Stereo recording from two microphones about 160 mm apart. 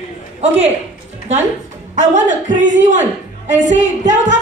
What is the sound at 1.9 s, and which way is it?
A woman's voice, 50° right (ahead or behind).